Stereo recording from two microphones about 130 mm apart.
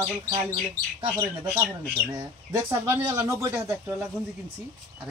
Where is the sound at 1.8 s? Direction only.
25° right (ahead or behind).